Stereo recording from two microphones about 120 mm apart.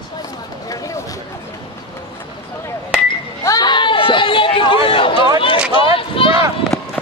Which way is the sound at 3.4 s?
35° left (ahead or behind).